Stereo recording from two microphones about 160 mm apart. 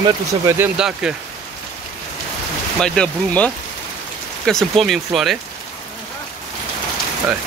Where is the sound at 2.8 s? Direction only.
5° left (ahead or behind).